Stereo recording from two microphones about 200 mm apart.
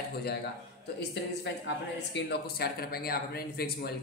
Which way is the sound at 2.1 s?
55° left (ahead or behind).